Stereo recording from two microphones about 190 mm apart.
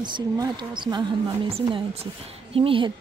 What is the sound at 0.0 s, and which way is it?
Speech, 25° right (ahead or behind).